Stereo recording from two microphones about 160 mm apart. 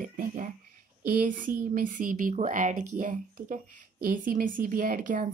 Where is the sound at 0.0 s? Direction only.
55° right (ahead or behind).